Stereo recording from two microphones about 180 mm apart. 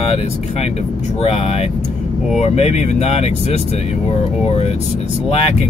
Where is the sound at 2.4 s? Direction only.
35° left (ahead or behind).